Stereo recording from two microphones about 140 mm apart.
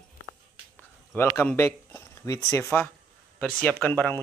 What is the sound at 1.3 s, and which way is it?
Speech, 15° left (ahead or behind).